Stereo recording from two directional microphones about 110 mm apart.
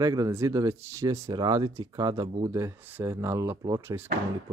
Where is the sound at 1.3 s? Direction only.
40° right (ahead or behind).